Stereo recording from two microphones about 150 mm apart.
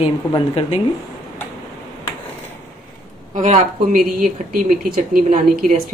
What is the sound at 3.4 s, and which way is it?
Speech, 55° right (ahead or behind).